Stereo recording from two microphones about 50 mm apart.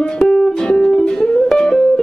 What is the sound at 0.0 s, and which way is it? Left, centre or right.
Music, centre.